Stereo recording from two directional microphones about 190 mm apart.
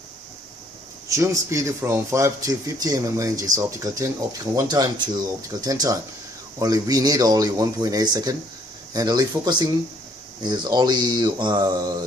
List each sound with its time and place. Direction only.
1.0 s speech: 15° right (ahead or behind)